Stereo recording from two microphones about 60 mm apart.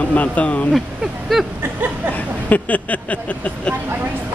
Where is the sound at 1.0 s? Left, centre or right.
Centre.